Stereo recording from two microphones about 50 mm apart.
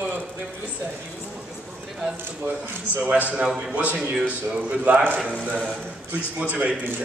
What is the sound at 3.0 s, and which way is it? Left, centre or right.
A woman's voice, right.